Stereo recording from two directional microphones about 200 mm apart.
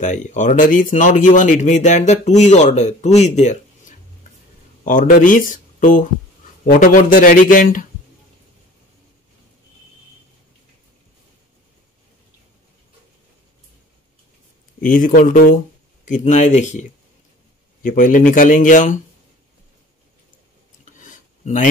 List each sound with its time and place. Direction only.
0.0 s a man's voice: 35° left (ahead or behind)
14.8 s a man's voice: 45° left (ahead or behind)
17.8 s a man's voice: 45° left (ahead or behind)
20.8 s a sound: 40° left (ahead or behind)